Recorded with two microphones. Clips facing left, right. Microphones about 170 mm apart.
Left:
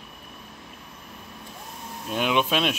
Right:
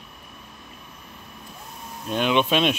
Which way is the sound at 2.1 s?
5° left (ahead or behind).